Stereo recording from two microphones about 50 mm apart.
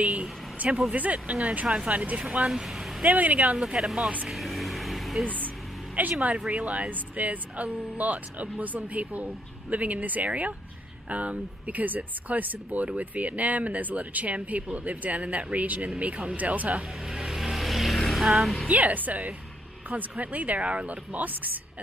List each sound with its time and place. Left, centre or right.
0.0 s speech: right
2.5 s speech: centre
3.0 s speech: right
3.5 s speech: centre
4.3 s vehicle: centre
6.0 s speech: right
17.1 s a sound: centre
17.4 s vehicle: centre
18.7 s speech: right